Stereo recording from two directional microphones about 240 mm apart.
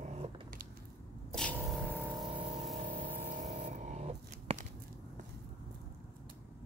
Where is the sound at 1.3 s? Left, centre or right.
Centre.